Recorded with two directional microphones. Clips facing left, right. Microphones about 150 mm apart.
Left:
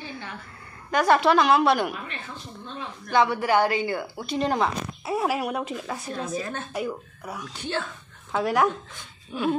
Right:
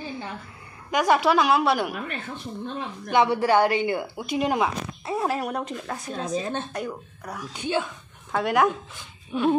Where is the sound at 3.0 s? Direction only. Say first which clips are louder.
Right 1 dB; 25° right (ahead or behind).